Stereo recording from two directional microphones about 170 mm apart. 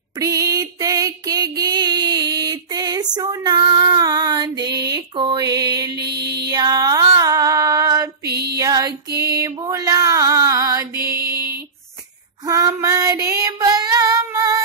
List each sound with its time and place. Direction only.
0.2 s a sound: 20° right (ahead or behind)
6.5 s female singing: 25° right (ahead or behind)
8.3 s music: 70° right (ahead or behind)
8.5 s music: 20° right (ahead or behind)
12.4 s female singing: 20° right (ahead or behind)